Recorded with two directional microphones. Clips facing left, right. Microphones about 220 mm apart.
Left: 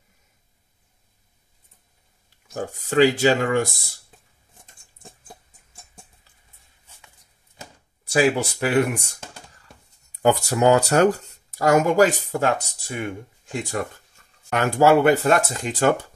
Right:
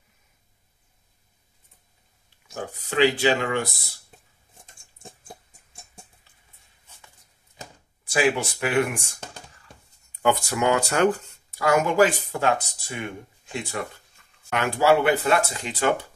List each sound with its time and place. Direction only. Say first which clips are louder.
2.5 s speech: left 6 dB; 45° left (ahead or behind)
8.0 s speech: left 3 dB; 40° left (ahead or behind)
10.2 s speech: left 4 dB; 40° left (ahead or behind)
14.2 s a sound: left 3 dB; 40° left (ahead or behind)
14.5 s speech: left 3 dB; 45° left (ahead or behind)